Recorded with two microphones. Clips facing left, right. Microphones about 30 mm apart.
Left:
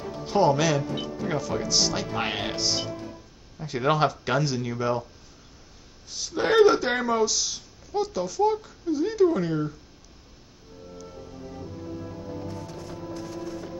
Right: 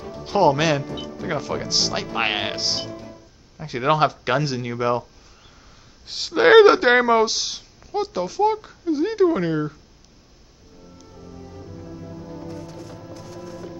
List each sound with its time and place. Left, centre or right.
0.2 s speech: right
6.0 s speech: right